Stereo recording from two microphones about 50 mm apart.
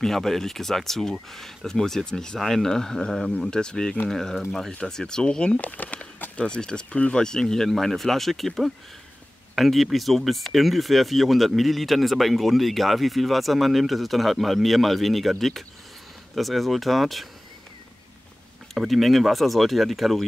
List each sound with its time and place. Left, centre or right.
0.0 s speech: centre
3.3 s speech: left
3.5 s speech: centre
5.6 s speech: left
6.4 s speech: centre
18.9 s speech: centre